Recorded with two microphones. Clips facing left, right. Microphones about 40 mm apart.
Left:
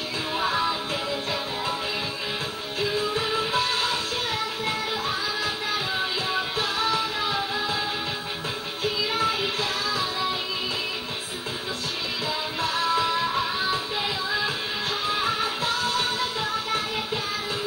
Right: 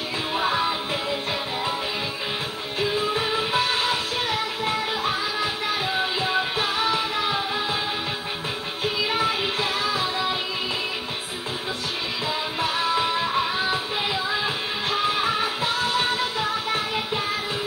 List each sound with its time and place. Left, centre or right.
0.4 s music: right
2.8 s music: right
9.1 s music: right
12.6 s music: right